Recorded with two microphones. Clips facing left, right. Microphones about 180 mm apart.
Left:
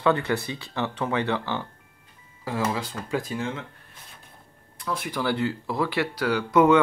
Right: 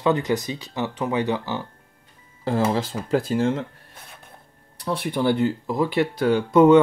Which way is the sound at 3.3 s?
45° right (ahead or behind).